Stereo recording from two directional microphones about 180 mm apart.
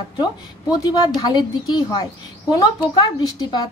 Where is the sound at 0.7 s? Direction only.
20° left (ahead or behind).